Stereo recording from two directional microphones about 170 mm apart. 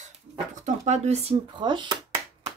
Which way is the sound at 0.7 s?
45° right (ahead or behind).